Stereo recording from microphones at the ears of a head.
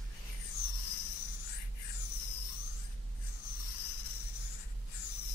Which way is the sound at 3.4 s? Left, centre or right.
Left.